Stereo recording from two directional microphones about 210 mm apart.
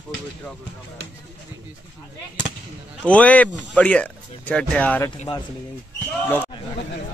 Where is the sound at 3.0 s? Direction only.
5° left (ahead or behind).